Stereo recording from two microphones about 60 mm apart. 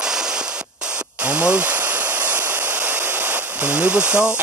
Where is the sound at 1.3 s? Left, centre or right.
Centre.